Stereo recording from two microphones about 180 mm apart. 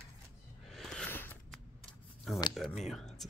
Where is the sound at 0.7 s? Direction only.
Centre (ahead or behind).